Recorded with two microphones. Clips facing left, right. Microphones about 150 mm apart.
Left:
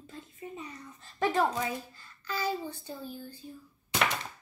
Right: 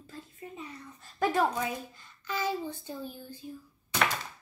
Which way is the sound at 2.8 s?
15° right (ahead or behind).